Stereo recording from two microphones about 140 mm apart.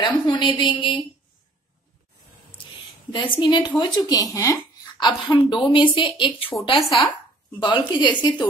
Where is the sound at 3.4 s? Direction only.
35° left (ahead or behind).